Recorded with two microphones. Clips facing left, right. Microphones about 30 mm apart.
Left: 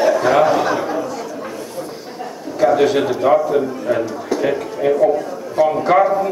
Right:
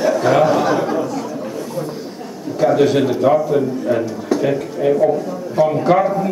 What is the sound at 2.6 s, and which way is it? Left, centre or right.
A man's voice, centre.